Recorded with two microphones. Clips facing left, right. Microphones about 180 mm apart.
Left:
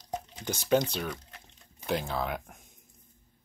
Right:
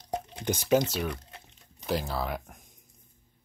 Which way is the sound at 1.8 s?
Centre (ahead or behind).